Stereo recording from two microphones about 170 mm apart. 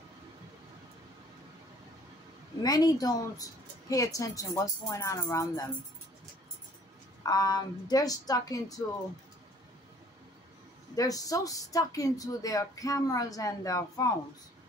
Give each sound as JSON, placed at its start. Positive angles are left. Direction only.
{"t": 2.6, "sound": "speech", "side_deg": 20}
{"t": 7.2, "sound": "speech", "side_deg": 25}
{"t": 11.0, "sound": "speech", "side_deg": 20}